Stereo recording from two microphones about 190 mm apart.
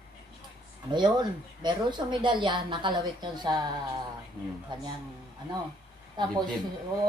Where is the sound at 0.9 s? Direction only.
25° right (ahead or behind).